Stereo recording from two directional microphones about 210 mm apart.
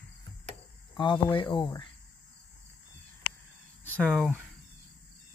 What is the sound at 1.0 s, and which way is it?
Speech, 25° left (ahead or behind).